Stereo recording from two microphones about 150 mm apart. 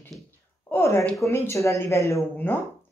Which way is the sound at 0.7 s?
15° left (ahead or behind).